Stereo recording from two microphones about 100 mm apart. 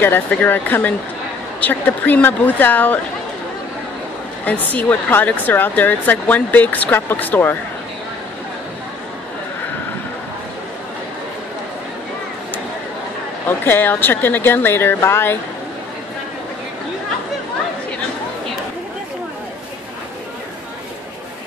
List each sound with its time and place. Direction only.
0.0 s speech: 20° left (ahead or behind)
4.5 s speech: 20° left (ahead or behind)
13.5 s speech: 20° left (ahead or behind)